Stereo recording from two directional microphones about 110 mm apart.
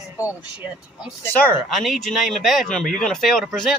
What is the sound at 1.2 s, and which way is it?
Speech, 15° left (ahead or behind).